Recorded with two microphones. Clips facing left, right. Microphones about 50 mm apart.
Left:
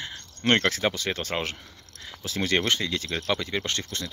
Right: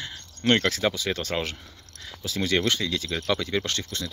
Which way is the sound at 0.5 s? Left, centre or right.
Left.